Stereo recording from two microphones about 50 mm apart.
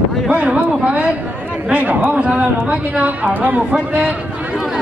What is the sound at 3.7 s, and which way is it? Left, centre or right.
Speech, right.